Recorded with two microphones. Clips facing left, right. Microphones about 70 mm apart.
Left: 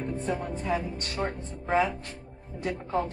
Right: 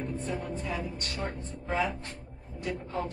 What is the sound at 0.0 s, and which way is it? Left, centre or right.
Speech, left.